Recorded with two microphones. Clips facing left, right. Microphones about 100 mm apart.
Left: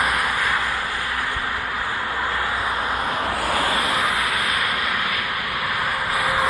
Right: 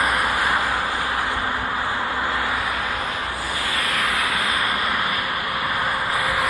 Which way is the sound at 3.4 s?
40° left (ahead or behind).